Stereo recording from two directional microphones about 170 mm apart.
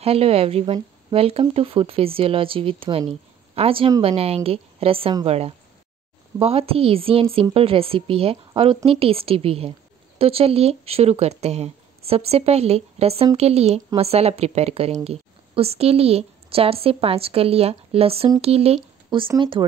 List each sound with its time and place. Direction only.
0.0 s a woman's voice: 35° right (ahead or behind)